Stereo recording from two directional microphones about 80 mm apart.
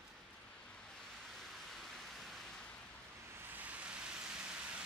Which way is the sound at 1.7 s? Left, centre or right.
Centre.